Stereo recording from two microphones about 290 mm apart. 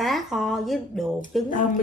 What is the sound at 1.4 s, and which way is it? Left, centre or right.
Speech, left.